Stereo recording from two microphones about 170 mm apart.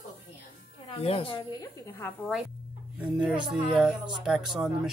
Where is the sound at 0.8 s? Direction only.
35° left (ahead or behind).